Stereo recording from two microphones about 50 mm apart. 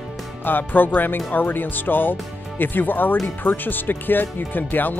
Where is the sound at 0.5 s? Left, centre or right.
Left.